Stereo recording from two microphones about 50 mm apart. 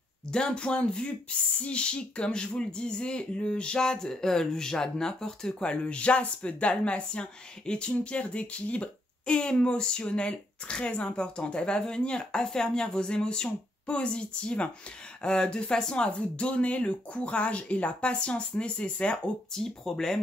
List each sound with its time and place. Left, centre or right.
0.3 s speech: centre
19.5 s speech: centre